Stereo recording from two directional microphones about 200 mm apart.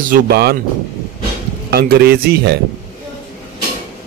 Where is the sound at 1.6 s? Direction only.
50° right (ahead or behind).